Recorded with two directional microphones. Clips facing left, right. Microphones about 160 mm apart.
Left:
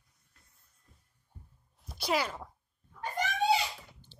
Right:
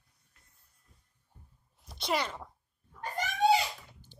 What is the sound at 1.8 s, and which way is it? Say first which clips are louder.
Speech: left 1 dB; 5° left (ahead or behind).